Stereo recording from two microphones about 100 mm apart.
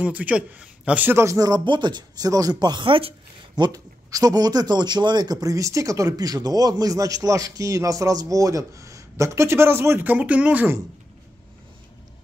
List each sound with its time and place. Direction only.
0.0 s a man's voice: 15° right (ahead or behind)
1.1 s a man's voice: 30° right (ahead or behind)
1.5 s speech: 50° right (ahead or behind); by 3.2 s 65° right (ahead or behind)
3.5 s a man's voice: 40° right (ahead or behind); by 10.8 s 15° right (ahead or behind)